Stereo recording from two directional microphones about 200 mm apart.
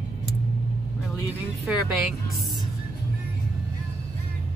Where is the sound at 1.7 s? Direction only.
Centre (ahead or behind).